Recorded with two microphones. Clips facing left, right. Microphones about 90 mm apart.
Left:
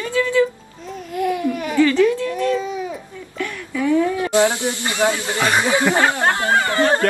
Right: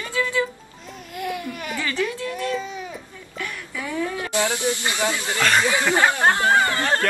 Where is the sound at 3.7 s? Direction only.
20° left (ahead or behind).